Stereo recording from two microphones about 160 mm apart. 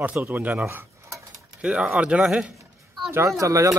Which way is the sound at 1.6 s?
5° right (ahead or behind).